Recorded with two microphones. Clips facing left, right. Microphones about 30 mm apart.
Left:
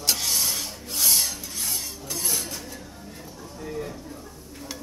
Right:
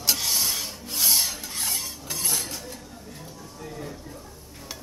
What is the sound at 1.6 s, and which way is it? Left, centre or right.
Filing, centre.